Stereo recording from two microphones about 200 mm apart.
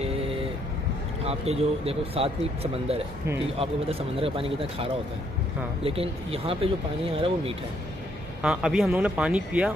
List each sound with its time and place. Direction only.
1.2 s speech: 30° right (ahead or behind)
8.4 s speech: 5° right (ahead or behind)